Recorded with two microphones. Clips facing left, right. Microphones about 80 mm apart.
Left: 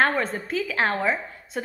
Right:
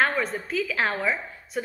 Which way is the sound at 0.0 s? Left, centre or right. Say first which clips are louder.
Left 2 dB; left.